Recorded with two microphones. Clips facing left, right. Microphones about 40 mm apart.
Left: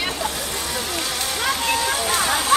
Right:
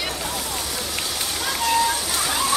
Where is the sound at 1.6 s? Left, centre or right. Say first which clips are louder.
Right 5 dB; left.